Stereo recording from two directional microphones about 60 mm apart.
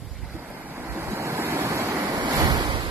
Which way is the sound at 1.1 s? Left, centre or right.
Right.